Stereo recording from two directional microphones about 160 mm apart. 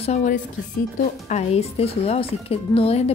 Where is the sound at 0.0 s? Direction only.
45° left (ahead or behind).